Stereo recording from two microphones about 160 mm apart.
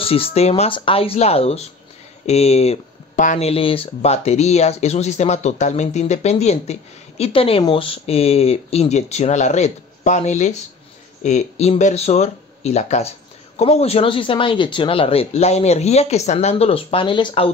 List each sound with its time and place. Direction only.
0.0 s speech: 35° left (ahead or behind)